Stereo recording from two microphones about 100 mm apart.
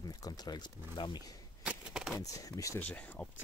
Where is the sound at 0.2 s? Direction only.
45° left (ahead or behind).